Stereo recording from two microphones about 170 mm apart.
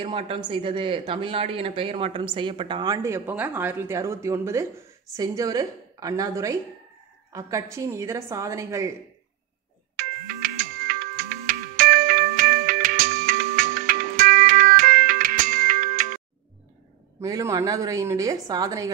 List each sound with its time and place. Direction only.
0.0 s a woman's voice: 30° right (ahead or behind); by 8.9 s 15° right (ahead or behind)
9.9 s music: 55° right (ahead or behind)
17.2 s speech: 20° right (ahead or behind)